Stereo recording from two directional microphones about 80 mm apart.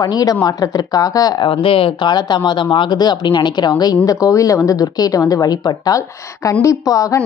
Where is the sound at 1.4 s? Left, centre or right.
Left.